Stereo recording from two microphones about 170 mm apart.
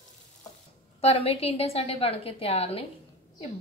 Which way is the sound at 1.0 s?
35° left (ahead or behind).